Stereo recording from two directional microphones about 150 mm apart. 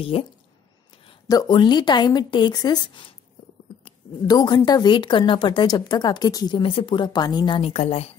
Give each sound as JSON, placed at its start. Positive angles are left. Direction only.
{"t": 0.0, "sound": "a woman's voice", "side_deg": 40}
{"t": 1.2, "sound": "a woman's voice", "side_deg": 25}
{"t": 4.3, "sound": "a woman's voice", "side_deg": 25}